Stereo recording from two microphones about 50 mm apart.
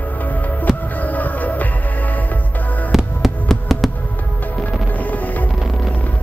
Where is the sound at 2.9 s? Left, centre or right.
Centre.